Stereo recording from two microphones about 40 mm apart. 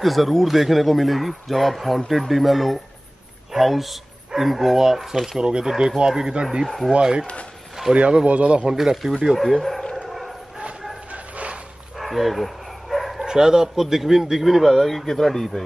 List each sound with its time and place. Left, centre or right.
0.0 s speech: centre
5.4 s speech: right
6.6 s speech: centre
6.9 s a man's voice: right
8.7 s speech: centre
9.6 s speech: centre
10.0 s howl: centre
11.1 s dog: right
12.0 s speech: centre
12.9 s dog: centre
13.2 s speech: centre